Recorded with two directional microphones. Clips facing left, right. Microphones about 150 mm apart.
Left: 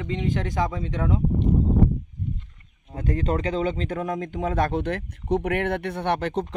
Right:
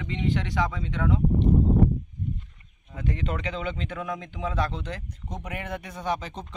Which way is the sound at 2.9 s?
40° left (ahead or behind).